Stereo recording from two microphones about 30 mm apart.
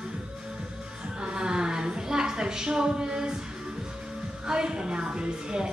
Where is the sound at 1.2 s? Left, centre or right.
Right.